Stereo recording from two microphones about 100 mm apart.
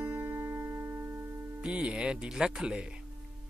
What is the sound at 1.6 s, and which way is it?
Speech, 10° right (ahead or behind).